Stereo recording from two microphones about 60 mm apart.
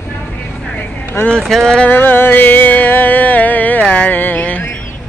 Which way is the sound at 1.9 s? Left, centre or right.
Left.